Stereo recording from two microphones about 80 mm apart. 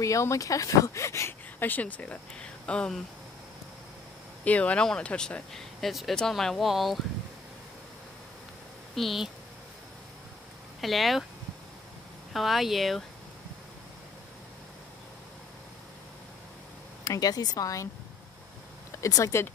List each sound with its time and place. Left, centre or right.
0.0 s speech: left
1.6 s speech: left
4.5 s speech: centre
8.9 s speech: centre
10.8 s speech: centre
12.3 s speech: centre
17.0 s speech: left
18.9 s speech: left